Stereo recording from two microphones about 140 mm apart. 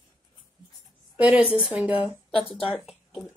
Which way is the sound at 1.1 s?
10° right (ahead or behind).